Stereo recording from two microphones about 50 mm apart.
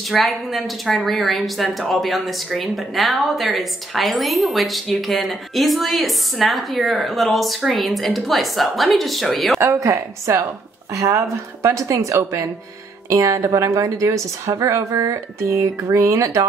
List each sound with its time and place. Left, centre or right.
0.1 s a woman's voice: centre
9.6 s a woman's voice: right